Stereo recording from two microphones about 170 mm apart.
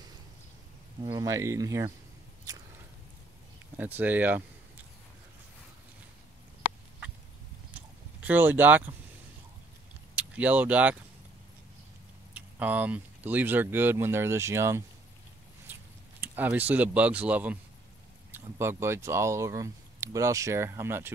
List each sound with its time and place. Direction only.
1.0 s speech: 20° right (ahead or behind)
3.7 s speech: 10° right (ahead or behind)
8.2 s speech: 10° right (ahead or behind)
10.1 s speech: 10° right (ahead or behind)
12.4 s speech: 10° right (ahead or behind)
15.6 s a sound: 10° right (ahead or behind)
18.3 s speech: 15° right (ahead or behind)